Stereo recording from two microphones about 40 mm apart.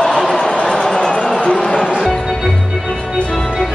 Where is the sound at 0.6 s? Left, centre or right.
Centre.